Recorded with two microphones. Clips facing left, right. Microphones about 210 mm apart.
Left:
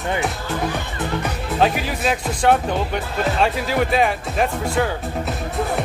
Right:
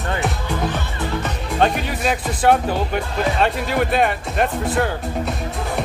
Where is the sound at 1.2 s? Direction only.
5° left (ahead or behind).